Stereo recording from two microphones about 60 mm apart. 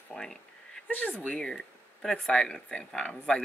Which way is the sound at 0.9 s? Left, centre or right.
Left.